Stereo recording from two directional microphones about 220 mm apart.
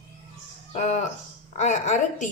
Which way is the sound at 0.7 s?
30° left (ahead or behind).